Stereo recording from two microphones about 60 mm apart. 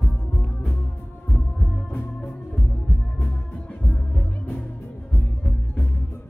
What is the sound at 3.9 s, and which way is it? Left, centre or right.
Music, left.